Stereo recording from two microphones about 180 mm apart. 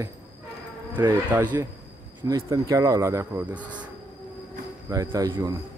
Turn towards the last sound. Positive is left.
turn(degrees=-20)  # may be behind; listen again after turning